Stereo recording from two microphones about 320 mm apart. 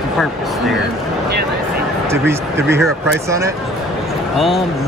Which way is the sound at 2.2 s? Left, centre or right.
Centre.